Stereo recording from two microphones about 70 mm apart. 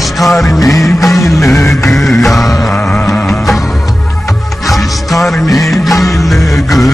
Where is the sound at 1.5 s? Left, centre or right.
Left.